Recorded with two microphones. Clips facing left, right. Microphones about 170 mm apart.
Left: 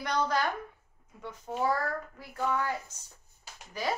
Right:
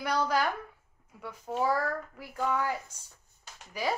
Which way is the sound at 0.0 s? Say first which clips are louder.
Right 1 dB; 10° right (ahead or behind).